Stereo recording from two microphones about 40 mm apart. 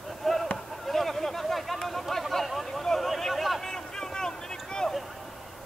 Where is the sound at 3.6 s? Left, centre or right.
Centre.